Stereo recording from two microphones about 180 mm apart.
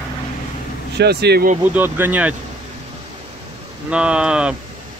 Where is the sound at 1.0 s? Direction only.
65° right (ahead or behind).